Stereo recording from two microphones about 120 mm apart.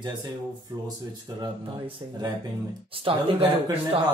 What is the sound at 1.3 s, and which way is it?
Speech, 40° right (ahead or behind).